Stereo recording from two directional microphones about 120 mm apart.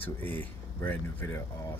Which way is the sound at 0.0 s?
15° left (ahead or behind).